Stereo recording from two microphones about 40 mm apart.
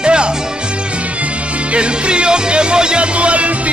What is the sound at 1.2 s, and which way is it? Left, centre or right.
Music, right.